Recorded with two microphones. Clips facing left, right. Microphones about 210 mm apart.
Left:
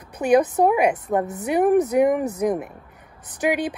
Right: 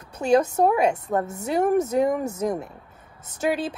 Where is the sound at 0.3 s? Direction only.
15° left (ahead or behind).